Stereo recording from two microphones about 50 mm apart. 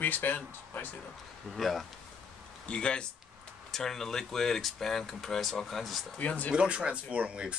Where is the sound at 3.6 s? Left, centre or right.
Centre.